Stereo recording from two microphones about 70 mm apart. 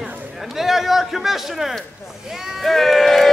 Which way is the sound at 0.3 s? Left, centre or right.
Centre.